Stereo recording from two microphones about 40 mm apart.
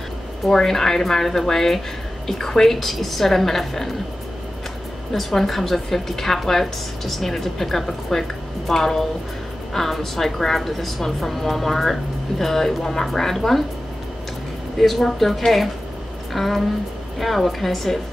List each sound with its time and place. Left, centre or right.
0.5 s a woman's voice: centre
5.1 s a woman's voice: centre
14.8 s a woman's voice: centre